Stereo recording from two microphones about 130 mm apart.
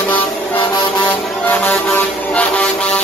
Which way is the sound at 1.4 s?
15° left (ahead or behind).